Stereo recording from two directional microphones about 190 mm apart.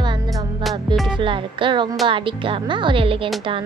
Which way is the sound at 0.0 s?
25° right (ahead or behind).